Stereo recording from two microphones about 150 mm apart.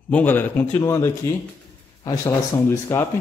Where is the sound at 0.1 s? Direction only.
10° left (ahead or behind).